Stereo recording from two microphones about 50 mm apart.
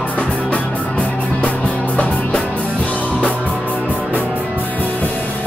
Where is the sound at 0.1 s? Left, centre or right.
Left.